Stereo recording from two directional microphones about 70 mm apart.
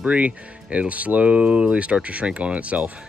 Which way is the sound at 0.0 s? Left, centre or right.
Centre.